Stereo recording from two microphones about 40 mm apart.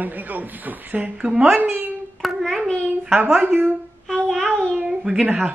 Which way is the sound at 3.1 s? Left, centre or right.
Right.